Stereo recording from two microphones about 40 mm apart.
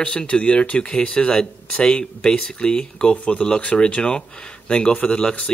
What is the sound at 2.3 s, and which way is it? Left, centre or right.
Speech, left.